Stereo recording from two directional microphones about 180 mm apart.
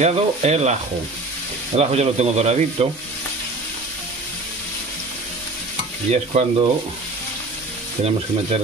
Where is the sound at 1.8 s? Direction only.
35° right (ahead or behind).